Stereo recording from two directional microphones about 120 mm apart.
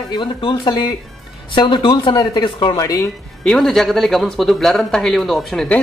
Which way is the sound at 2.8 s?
30° left (ahead or behind).